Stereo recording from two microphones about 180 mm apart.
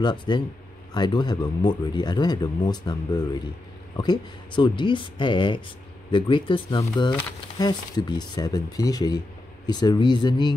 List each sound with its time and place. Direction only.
0.0 s speech: 25° left (ahead or behind)